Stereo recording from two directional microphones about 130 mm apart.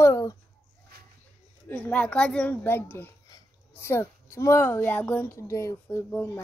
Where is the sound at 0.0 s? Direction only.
25° left (ahead or behind).